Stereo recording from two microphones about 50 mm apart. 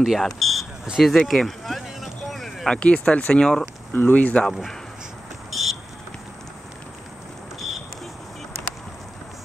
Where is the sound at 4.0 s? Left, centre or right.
Left.